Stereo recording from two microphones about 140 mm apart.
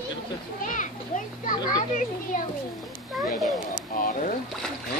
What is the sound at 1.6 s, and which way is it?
Speech, 30° left (ahead or behind).